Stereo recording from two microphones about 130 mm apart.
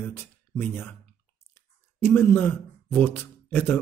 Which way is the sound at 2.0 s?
15° left (ahead or behind).